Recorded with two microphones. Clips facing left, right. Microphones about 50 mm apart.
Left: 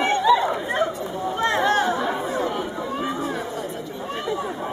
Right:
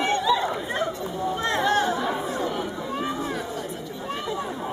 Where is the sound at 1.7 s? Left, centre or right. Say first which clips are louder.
Left 2 dB; left.